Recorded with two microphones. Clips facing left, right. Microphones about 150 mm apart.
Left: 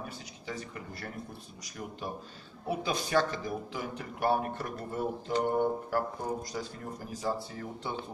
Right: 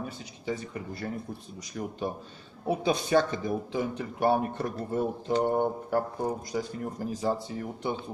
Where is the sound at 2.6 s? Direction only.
25° right (ahead or behind).